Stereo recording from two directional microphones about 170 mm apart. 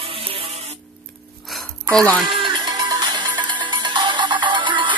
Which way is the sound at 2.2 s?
25° right (ahead or behind).